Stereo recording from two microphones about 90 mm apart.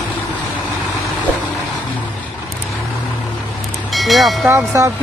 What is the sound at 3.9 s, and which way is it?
Speech, centre (ahead or behind).